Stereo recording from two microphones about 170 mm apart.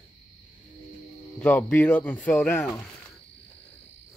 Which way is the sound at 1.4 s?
10° left (ahead or behind).